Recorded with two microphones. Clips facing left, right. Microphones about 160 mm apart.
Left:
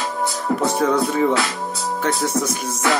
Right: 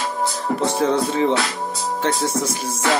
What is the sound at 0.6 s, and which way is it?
Music, 30° right (ahead or behind).